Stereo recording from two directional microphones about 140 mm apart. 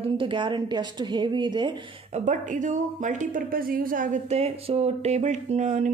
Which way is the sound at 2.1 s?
65° right (ahead or behind).